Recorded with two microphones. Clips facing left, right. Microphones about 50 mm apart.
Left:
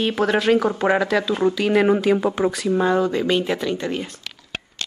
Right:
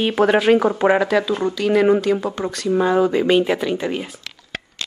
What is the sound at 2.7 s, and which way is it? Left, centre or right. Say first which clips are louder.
Speech: right 5 dB; centre.